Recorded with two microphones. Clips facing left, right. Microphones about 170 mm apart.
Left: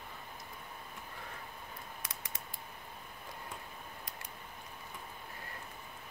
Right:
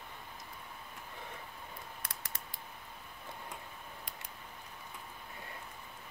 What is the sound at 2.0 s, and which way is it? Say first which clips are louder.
Scissors: even; 65° right (ahead or behind).